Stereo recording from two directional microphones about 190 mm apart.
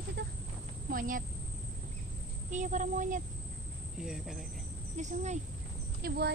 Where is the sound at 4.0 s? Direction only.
Centre (ahead or behind).